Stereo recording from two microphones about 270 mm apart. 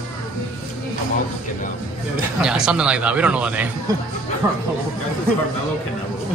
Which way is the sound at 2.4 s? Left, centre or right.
Centre.